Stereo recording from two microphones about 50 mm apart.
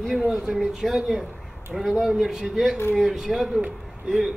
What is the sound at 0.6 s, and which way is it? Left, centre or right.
A man's voice, centre.